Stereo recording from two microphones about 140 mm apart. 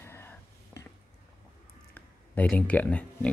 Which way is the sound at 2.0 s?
10° left (ahead or behind).